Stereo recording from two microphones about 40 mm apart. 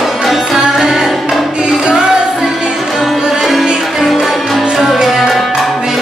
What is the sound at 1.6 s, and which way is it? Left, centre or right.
Music, right.